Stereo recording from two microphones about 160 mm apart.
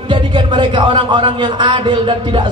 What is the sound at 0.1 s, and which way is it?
A man's voice, 30° right (ahead or behind).